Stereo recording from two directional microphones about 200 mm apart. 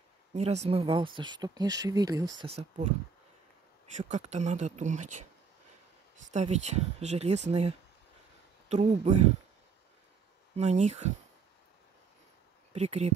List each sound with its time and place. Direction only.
0.3 s speech: 35° right (ahead or behind)
2.4 s speech: 30° right (ahead or behind)
6.3 s speech: 35° right (ahead or behind)
10.5 s speech: 35° right (ahead or behind)
12.7 s speech: 35° right (ahead or behind)